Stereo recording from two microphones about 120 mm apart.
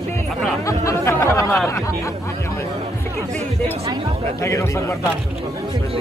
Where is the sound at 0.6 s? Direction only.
25° left (ahead or behind).